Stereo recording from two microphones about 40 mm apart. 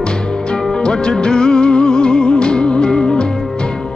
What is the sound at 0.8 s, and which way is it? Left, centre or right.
Music, left.